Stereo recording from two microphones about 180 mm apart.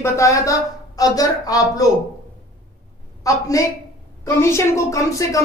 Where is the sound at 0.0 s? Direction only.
15° left (ahead or behind).